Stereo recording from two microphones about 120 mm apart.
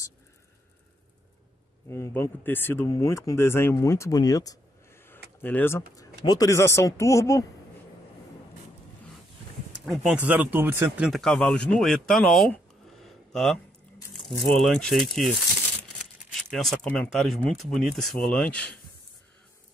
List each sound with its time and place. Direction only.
1.9 s speech: 25° left (ahead or behind)
5.0 s a sound: 15° left (ahead or behind)
6.2 s speech: 30° left (ahead or behind)
9.7 s speech: 10° right (ahead or behind)
11.1 s speech: 5° left (ahead or behind)
13.0 s a sound: 5° left (ahead or behind)
14.1 s speech: centre (ahead or behind)
16.4 s speech: 5° left (ahead or behind)